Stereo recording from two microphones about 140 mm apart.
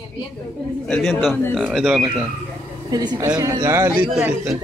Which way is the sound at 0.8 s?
5° left (ahead or behind).